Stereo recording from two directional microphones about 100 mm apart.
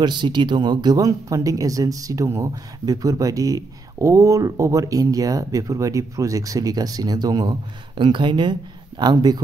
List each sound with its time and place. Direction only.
0.0 s speech: 50° right (ahead or behind)